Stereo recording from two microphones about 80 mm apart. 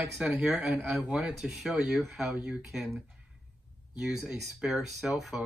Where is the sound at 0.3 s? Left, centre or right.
Centre.